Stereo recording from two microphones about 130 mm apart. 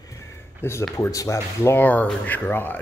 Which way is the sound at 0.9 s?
25° left (ahead or behind).